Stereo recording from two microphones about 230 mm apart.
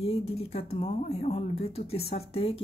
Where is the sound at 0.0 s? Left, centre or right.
Left.